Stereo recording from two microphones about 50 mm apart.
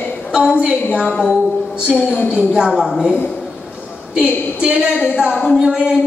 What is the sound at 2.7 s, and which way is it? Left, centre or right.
Speech, centre.